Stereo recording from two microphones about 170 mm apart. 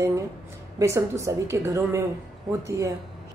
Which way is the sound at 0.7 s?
15° right (ahead or behind).